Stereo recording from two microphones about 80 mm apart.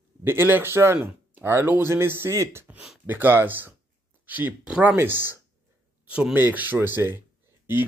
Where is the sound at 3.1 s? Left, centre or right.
Right.